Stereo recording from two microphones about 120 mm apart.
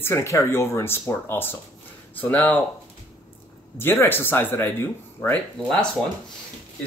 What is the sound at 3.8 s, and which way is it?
Speech, 20° left (ahead or behind).